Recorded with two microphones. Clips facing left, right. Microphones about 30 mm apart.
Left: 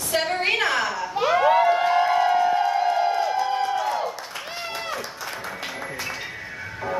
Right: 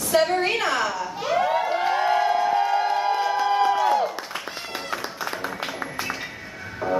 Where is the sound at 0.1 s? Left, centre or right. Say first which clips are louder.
Right 2 dB; centre.